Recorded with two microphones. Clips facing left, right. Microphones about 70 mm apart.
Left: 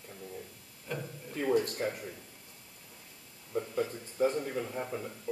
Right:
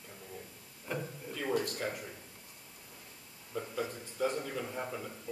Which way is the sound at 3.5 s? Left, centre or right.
Left.